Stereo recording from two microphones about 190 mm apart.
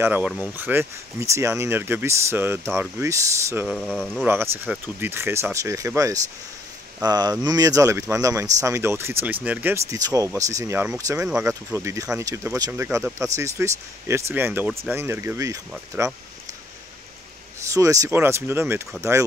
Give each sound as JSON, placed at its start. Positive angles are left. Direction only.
{"t": 0.0, "sound": "speech", "side_deg": -10}
{"t": 3.6, "sound": "speech", "side_deg": 5}
{"t": 4.6, "sound": "speech", "side_deg": -10}
{"t": 17.6, "sound": "speech", "side_deg": -15}